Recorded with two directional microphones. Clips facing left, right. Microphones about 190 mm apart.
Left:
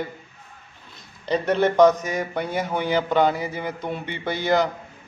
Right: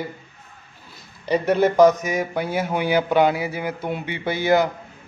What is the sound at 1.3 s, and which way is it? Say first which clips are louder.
A man's voice: right 2 dB; 10° right (ahead or behind).